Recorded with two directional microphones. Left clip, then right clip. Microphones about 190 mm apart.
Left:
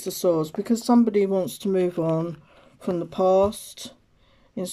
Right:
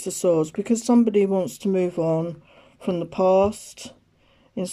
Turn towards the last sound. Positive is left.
turn(degrees=-5)  # may be behind; listen again after turning